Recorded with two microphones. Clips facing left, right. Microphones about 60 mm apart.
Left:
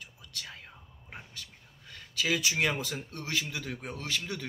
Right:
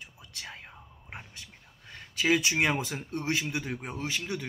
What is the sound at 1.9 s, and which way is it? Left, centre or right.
A man's voice, right.